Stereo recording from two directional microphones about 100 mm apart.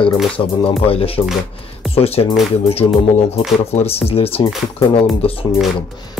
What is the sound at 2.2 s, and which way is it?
Speech, 55° left (ahead or behind).